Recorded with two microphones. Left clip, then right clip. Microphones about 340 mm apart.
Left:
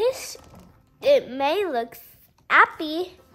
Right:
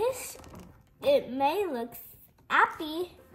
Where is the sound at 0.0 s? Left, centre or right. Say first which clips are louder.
Left 6 dB; centre.